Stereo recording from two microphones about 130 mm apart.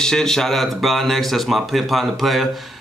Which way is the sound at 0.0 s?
5° left (ahead or behind).